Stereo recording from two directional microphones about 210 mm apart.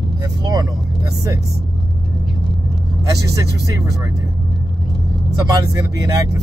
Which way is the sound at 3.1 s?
15° right (ahead or behind).